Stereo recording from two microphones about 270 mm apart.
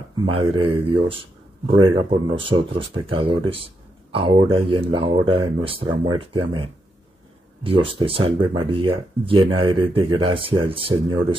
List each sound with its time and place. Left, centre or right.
0.2 s speech: centre